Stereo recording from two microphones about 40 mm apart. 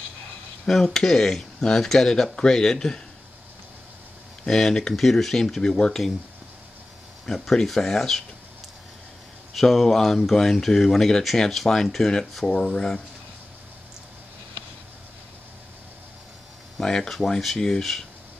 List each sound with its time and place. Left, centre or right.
0.8 s speech: centre
4.5 s speech: centre
7.2 s speech: centre
9.5 s speech: centre
16.8 s speech: centre